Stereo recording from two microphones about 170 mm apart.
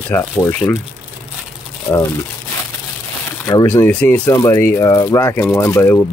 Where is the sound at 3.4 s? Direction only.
15° left (ahead or behind).